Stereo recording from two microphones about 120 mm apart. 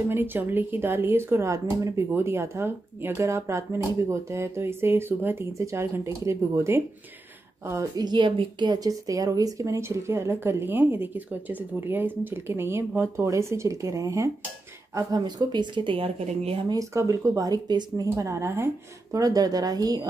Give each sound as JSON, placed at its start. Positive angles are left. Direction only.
{"t": 0.1, "sound": "speech", "side_deg": -15}
{"t": 8.0, "sound": "a woman's voice", "side_deg": -40}
{"t": 16.6, "sound": "a woman's voice", "side_deg": -25}